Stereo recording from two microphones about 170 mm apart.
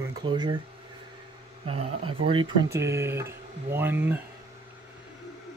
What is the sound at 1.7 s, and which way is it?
Speech, 35° right (ahead or behind).